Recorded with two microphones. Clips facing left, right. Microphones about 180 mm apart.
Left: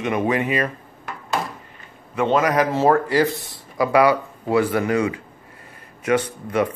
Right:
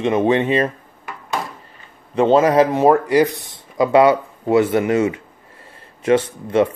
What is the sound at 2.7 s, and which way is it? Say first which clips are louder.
Speech: right 3 dB; 20° right (ahead or behind).